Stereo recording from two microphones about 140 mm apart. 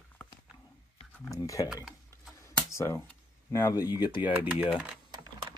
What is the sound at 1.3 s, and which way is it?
Speech, 25° left (ahead or behind).